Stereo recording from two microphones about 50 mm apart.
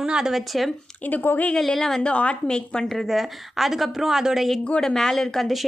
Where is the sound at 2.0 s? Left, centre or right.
Left.